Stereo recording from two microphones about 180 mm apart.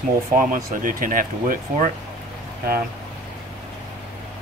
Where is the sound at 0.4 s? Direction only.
50° right (ahead or behind).